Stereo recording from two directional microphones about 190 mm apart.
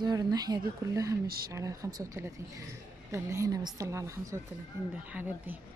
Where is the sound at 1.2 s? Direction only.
50° right (ahead or behind).